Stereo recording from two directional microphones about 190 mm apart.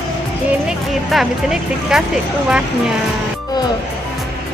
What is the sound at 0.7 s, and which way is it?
Speech, 5° right (ahead or behind).